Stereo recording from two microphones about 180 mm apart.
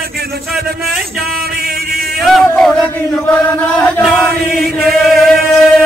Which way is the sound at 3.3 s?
10° left (ahead or behind).